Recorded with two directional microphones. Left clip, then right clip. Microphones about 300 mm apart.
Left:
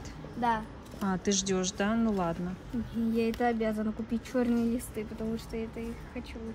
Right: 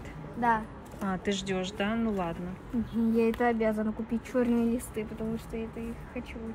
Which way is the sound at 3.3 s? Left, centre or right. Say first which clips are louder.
Right 2 dB; centre.